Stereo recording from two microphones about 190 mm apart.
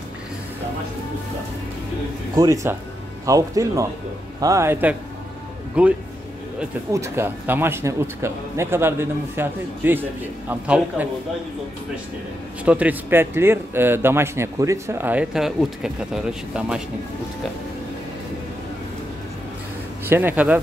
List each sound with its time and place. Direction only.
2.3 s a man's voice: 15° right (ahead or behind)
12.6 s a man's voice: 10° right (ahead or behind)
20.1 s a man's voice: 10° right (ahead or behind)